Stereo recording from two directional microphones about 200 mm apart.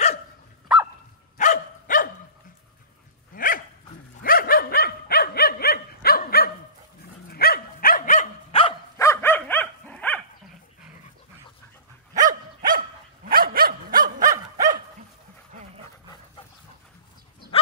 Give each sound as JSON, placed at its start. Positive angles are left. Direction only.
{"t": 1.4, "sound": "dog", "side_deg": 40}
{"t": 3.3, "sound": "dog", "side_deg": 45}
{"t": 8.9, "sound": "dog", "side_deg": 15}
{"t": 12.3, "sound": "dog", "side_deg": -45}
{"t": 14.2, "sound": "dog", "side_deg": -15}
{"t": 15.5, "sound": "dog", "side_deg": -35}